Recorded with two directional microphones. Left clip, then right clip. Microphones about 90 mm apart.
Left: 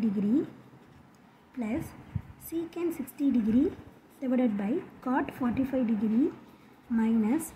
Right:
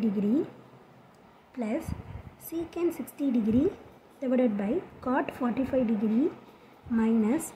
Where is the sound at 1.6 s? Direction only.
10° right (ahead or behind).